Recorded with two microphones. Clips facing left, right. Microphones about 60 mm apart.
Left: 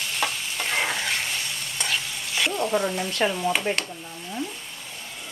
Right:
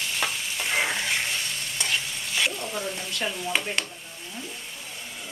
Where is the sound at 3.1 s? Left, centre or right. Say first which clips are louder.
Left 6 dB; left.